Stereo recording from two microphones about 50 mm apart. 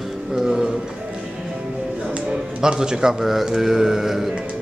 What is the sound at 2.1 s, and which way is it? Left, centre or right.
Speech, centre.